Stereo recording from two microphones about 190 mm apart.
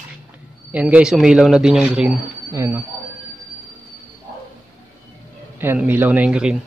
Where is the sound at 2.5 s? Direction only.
15° right (ahead or behind).